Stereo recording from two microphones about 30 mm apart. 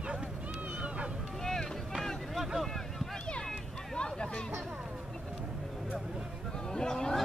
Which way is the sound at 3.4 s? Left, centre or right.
Left.